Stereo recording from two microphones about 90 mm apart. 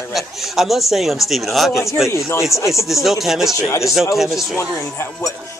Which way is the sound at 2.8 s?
Centre (ahead or behind).